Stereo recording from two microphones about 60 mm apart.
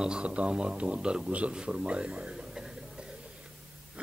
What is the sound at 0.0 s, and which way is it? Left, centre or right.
A man's voice, centre.